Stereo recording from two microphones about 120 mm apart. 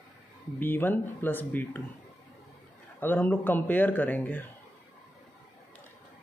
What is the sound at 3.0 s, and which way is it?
Speech, 15° left (ahead or behind).